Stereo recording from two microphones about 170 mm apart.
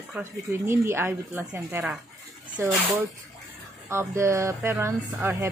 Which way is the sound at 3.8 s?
15° right (ahead or behind).